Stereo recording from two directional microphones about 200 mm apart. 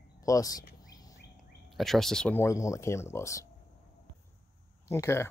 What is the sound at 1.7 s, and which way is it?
Speech, centre (ahead or behind).